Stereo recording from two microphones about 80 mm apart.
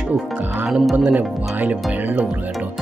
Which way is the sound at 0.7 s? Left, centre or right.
Centre.